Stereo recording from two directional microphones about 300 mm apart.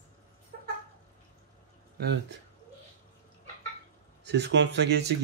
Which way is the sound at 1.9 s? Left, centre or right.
Right.